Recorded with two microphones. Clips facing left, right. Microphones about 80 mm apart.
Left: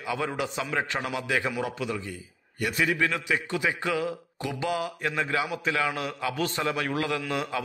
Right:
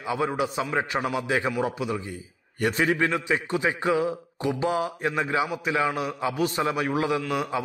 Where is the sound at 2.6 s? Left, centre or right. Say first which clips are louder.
Right 3 dB; right.